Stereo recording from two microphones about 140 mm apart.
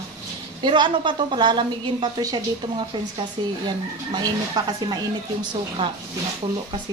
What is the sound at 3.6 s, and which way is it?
A woman's voice, 30° right (ahead or behind).